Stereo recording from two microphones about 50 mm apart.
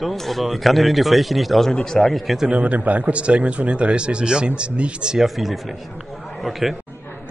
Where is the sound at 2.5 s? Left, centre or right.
Right; by 6.8 s centre.